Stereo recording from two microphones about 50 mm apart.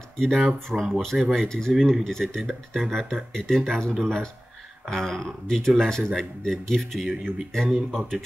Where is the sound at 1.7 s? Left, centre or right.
Centre.